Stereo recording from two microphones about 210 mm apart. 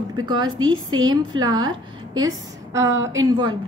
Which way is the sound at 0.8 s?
20° right (ahead or behind).